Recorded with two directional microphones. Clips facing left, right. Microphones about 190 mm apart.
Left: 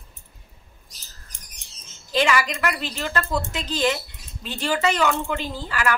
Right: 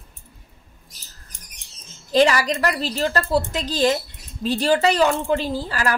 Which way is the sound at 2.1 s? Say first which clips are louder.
Right 5 dB; 40° right (ahead or behind).